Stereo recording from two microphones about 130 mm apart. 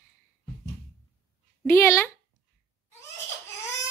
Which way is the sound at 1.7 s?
20° left (ahead or behind).